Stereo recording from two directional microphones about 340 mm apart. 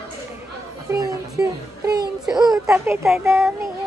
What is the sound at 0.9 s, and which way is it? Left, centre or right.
Music, centre.